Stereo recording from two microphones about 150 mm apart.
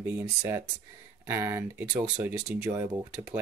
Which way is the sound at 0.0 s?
15° right (ahead or behind).